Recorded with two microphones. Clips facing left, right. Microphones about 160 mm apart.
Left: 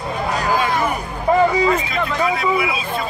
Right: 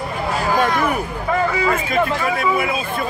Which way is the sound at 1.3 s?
35° left (ahead or behind).